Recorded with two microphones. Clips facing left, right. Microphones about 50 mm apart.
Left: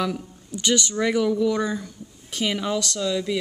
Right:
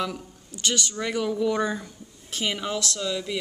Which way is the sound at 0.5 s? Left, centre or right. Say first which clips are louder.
Left 5 dB; centre.